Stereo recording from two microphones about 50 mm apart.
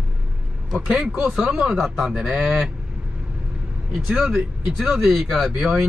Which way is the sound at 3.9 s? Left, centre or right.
Centre.